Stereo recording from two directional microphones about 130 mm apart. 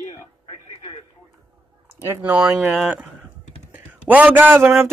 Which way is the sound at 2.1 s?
15° right (ahead or behind).